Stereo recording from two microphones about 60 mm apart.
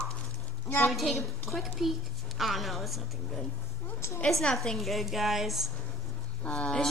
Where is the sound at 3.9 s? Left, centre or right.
Left.